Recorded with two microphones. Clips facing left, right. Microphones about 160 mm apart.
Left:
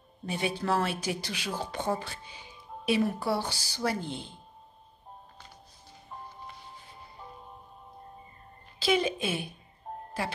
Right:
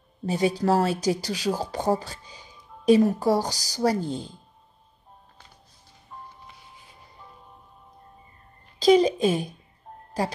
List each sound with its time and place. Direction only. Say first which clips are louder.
0.2 s speech: right 8 dB; 35° right (ahead or behind)
8.7 s speech: right 9 dB; 40° right (ahead or behind)